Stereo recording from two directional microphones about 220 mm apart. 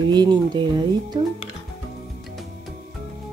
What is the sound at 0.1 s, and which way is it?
Speech, 20° right (ahead or behind).